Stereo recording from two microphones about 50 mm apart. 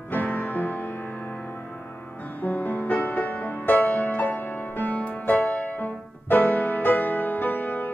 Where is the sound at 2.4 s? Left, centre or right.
Left.